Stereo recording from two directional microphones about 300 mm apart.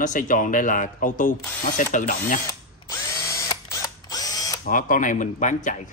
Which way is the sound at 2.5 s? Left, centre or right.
Centre.